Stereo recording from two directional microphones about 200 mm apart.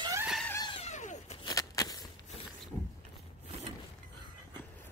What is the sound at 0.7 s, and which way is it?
Cat, 35° left (ahead or behind).